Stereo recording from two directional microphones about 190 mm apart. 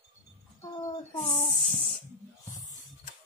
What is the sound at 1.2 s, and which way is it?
Speech, 40° left (ahead or behind).